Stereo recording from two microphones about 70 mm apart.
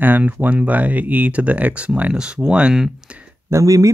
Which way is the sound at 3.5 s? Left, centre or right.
Right.